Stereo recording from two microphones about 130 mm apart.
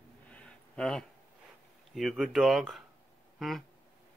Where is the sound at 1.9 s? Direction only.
Centre (ahead or behind).